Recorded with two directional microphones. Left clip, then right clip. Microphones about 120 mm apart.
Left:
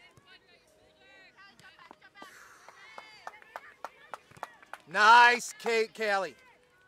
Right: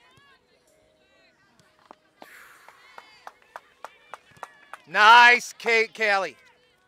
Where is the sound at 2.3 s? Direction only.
25° right (ahead or behind).